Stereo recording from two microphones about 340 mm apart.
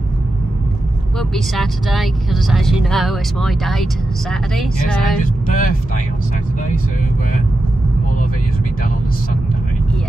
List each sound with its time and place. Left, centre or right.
1.3 s speech: centre
5.2 s speech: left